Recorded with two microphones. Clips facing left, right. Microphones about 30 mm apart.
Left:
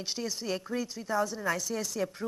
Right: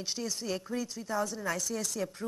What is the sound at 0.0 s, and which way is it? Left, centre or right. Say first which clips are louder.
A woman's voice: left 1 dB; centre.